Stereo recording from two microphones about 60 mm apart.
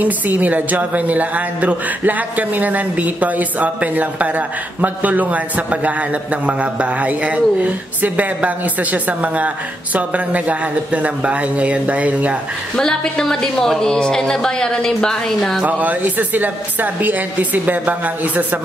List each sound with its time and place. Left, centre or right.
0.0 s a man's voice: right
12.7 s a woman's voice: centre
15.6 s a man's voice: right